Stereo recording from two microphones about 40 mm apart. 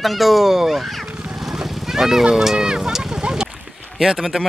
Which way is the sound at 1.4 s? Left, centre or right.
Centre.